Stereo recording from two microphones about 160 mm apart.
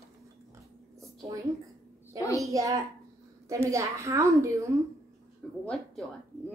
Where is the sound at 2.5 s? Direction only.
20° right (ahead or behind).